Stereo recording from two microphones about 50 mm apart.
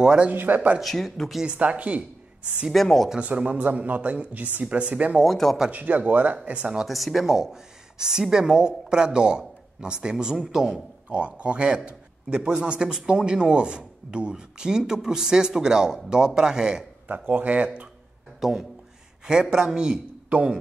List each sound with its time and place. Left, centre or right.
0.0 s a man's voice: centre
0.3 s speech: right
0.7 s speech: centre
1.4 s speech: right
2.7 s speech: centre
3.2 s speech: right
5.2 s speech: centre
5.7 s speech: right
6.9 s a man's voice: centre
11.1 s a man's voice: right
17.1 s speech: right
18.4 s speech: centre
19.5 s a man's voice: centre